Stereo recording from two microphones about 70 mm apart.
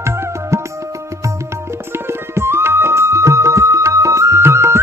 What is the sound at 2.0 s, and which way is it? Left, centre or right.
Music, right.